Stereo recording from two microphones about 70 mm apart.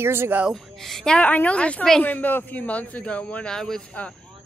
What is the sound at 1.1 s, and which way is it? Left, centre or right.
A man's voice, left.